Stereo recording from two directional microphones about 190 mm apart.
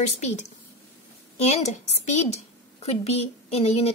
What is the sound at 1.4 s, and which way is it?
A woman's voice, 35° left (ahead or behind).